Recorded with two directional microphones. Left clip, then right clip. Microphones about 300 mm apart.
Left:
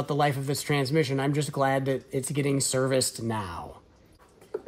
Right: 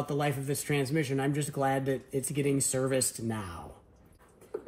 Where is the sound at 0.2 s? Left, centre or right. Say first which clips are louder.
Left 6 dB; left.